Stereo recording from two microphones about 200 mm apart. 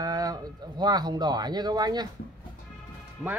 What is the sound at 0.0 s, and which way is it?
Speech, 20° right (ahead or behind).